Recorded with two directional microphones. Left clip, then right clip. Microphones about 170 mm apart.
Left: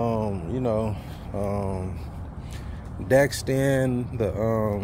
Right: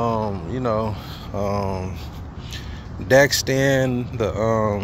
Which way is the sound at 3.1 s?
10° left (ahead or behind).